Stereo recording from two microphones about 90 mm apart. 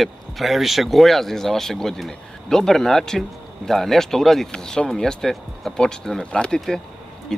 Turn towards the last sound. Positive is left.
turn(degrees=5)  # may be behind; listen again after turning